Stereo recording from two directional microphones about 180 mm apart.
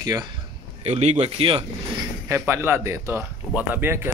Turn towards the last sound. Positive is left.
turn(degrees=-10)  # may be behind; listen again after turning